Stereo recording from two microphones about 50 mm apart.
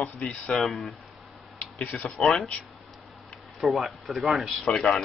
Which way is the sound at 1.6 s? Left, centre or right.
Left.